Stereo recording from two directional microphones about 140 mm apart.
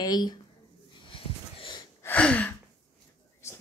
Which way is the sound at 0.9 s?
35° left (ahead or behind).